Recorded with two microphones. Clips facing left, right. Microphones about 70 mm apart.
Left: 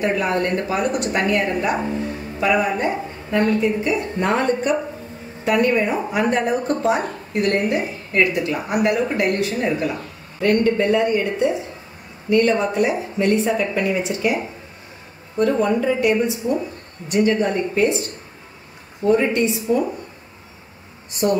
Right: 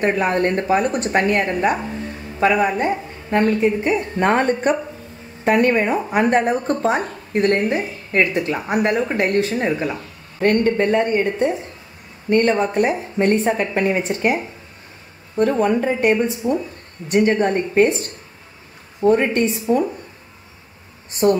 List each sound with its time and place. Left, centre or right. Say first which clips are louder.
0.0 s a woman's voice: right 2 dB; right
15.3 s a woman's voice: right 1 dB; right
19.0 s a woman's voice: right 1 dB; right
21.1 s speech: right 3 dB; right